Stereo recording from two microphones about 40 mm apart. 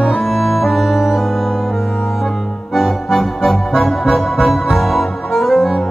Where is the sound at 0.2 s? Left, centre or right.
Centre.